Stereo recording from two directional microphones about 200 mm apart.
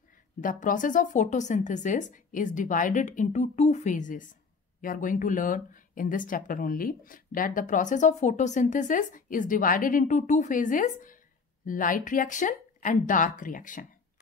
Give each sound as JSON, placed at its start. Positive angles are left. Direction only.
{"t": 0.4, "sound": "speech", "side_deg": 40}